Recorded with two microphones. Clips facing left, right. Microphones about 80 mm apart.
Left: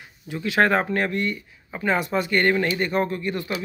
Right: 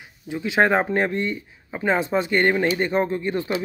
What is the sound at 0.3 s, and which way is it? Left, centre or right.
Speech, centre.